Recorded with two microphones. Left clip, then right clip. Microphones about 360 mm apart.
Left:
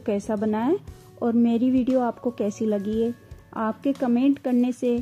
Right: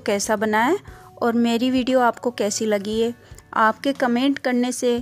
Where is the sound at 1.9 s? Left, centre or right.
Right.